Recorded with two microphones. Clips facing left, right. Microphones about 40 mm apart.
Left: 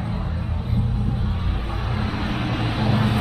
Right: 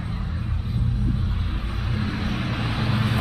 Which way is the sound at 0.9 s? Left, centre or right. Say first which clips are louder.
Left 1 dB; left.